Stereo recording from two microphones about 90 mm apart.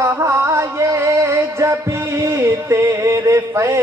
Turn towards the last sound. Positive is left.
turn(degrees=-35)  # may be behind; listen again after turning